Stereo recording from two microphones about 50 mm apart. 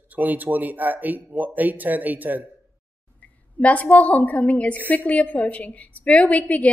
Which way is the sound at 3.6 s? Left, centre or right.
Left.